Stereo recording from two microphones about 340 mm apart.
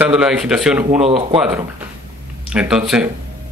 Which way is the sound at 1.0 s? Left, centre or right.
Centre.